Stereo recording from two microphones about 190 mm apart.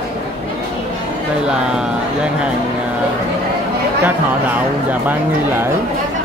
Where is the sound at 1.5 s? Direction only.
5° right (ahead or behind).